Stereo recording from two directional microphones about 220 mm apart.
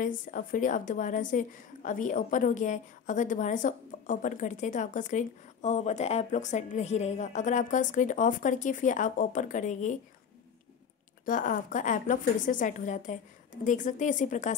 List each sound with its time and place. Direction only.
0.0 s a woman's voice: 35° left (ahead or behind)
11.2 s a woman's voice: 35° left (ahead or behind)